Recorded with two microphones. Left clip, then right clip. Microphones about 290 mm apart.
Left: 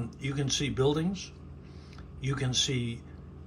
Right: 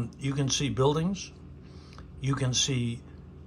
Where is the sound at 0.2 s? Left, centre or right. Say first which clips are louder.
Right 1 dB; centre.